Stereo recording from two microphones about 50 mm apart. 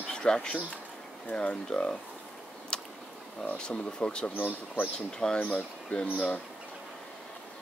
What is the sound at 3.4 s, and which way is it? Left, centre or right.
Speech, left.